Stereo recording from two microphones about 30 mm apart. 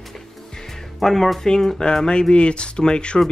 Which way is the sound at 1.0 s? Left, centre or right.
Centre.